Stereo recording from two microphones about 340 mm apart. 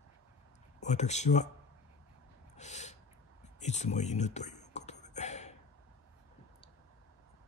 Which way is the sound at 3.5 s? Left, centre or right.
Centre.